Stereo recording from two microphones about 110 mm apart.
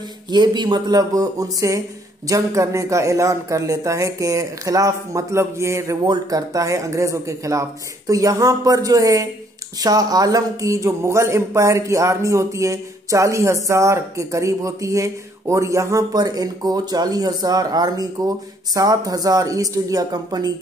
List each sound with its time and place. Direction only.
0.3 s a man's voice: 40° right (ahead or behind)